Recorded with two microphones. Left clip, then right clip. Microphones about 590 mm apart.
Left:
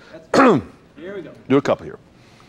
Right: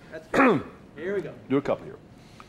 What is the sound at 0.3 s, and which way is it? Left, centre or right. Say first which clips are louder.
Throat clearing: left 7 dB; left.